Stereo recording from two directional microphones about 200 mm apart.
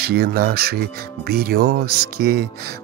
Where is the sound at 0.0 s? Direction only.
50° right (ahead or behind).